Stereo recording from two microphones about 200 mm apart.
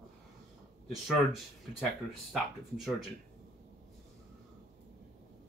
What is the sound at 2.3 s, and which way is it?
Speech, centre (ahead or behind).